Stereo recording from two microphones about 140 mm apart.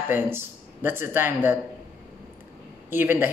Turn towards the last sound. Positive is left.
turn(degrees=-15)  # may be behind; listen again after turning